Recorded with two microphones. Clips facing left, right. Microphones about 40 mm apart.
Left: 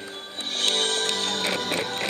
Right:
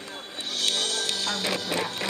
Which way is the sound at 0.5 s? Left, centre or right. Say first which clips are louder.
Left 3 dB; left.